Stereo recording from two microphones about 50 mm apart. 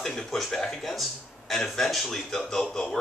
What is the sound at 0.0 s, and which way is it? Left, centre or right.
Speech, centre.